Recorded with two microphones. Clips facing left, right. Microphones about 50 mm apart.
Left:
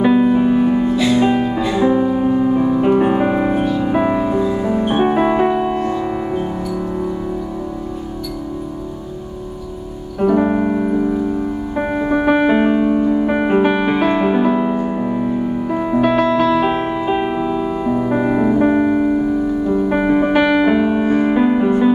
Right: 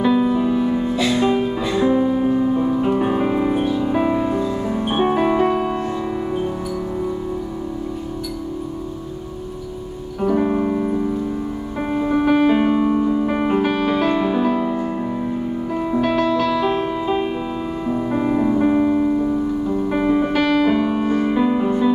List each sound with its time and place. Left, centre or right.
0.0 s music: left
4.2 s music: centre
10.2 s piano: left
11.9 s music: left
17.4 s music: centre